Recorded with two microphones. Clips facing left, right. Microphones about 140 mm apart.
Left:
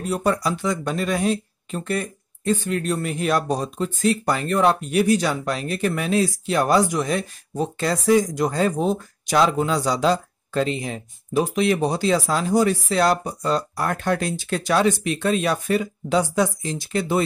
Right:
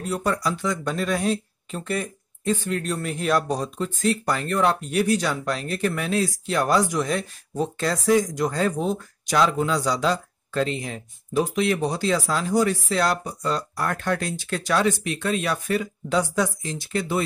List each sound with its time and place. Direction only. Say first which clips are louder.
0.2 s speech: left 3 dB; 25° left (ahead or behind)
0.9 s speech: left 2 dB; 5° left (ahead or behind)
3.4 s speech: left 2 dB; 20° left (ahead or behind)
8.7 s speech: left 3 dB; 30° left (ahead or behind)